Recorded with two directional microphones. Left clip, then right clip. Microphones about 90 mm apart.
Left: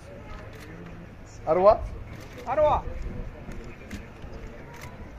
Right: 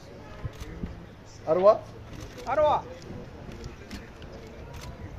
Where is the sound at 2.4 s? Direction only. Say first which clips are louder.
Left 1 dB; 20° right (ahead or behind).